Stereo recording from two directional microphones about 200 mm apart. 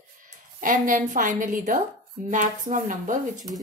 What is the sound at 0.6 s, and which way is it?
A woman's voice, 40° right (ahead or behind).